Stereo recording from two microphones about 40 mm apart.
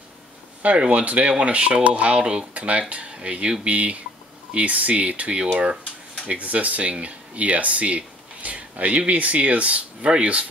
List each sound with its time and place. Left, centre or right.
0.7 s speech: right